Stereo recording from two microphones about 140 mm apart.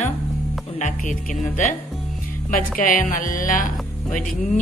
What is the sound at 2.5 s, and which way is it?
A woman's voice, 80° left.